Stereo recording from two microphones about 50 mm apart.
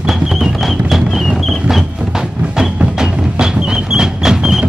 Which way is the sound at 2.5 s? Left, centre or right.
Centre.